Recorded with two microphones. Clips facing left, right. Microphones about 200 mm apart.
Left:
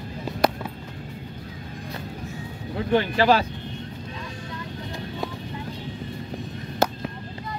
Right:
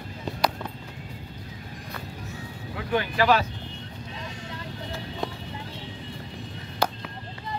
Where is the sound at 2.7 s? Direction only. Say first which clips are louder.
Left 4 dB; 30° left (ahead or behind).